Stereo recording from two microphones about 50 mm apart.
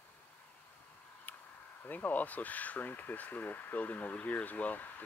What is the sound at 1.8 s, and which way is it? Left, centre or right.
Speech, left.